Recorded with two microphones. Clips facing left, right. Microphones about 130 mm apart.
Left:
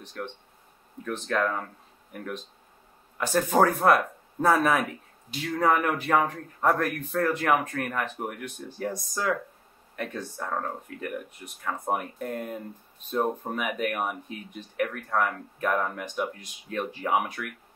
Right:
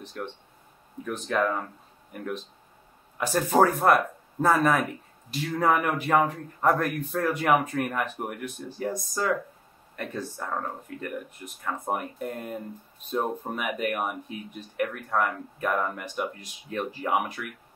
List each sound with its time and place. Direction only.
0.2 s speech: 5° right (ahead or behind)
3.2 s speech: 5° right (ahead or behind)